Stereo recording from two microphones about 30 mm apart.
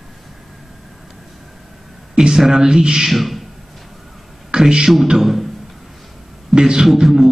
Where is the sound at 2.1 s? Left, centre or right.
Right.